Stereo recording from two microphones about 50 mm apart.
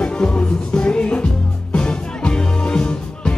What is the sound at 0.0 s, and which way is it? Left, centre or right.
Music, left.